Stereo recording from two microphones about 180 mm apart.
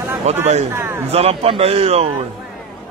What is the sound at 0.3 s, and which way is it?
Speech, 35° right (ahead or behind).